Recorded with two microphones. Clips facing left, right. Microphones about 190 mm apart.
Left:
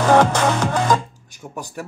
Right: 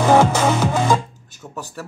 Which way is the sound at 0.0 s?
10° right (ahead or behind).